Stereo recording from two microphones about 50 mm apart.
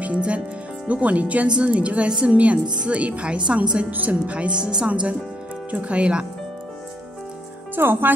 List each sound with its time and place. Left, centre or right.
0.0 s speech: right
5.7 s speech: right
7.7 s speech: right